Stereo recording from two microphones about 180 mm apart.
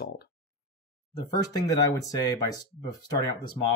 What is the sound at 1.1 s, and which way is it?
Speech, 20° left (ahead or behind).